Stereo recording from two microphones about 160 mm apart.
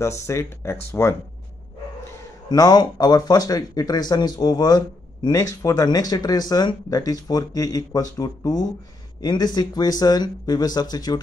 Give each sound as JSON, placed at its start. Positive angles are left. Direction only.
{"t": 0.0, "sound": "speech", "side_deg": 20}
{"t": 2.5, "sound": "speech", "side_deg": 25}